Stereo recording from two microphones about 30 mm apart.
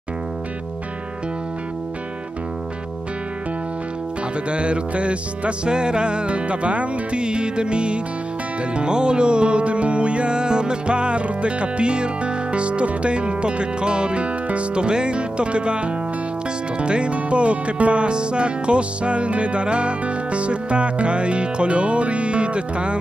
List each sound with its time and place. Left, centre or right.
4.5 s music: right
5.7 s music: right